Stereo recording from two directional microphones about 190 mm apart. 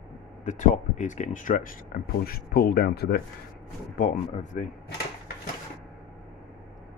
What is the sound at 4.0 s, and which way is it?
Speech, 45° left (ahead or behind).